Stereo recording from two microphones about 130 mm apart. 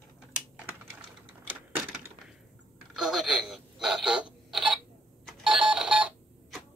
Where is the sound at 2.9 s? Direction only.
5° right (ahead or behind).